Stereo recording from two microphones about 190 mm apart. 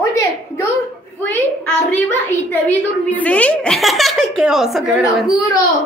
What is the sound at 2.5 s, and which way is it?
A woman's voice, 10° left (ahead or behind).